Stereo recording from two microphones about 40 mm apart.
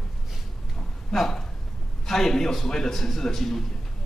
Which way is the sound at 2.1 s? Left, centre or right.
Centre.